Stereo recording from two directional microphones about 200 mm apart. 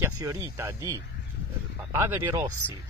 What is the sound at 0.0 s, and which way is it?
Speech, 15° right (ahead or behind).